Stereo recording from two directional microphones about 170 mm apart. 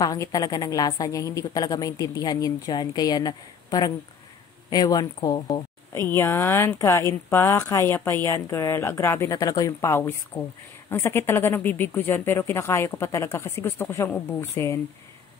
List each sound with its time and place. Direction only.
0.0 s a woman's voice: 20° left (ahead or behind)